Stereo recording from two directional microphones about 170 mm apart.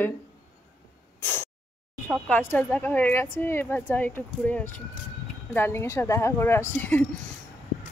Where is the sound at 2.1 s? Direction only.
10° left (ahead or behind).